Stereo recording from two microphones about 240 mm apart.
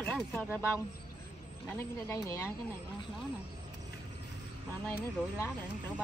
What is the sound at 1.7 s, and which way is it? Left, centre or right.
Speech, centre.